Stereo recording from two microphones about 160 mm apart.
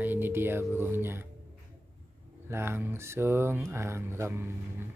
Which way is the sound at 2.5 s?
15° right (ahead or behind).